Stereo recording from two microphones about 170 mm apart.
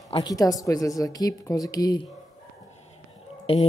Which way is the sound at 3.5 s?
35° left (ahead or behind).